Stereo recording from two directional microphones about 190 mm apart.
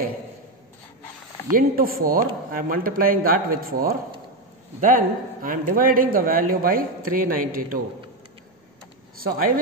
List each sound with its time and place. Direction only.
1.5 s a man's voice: 50° right (ahead or behind)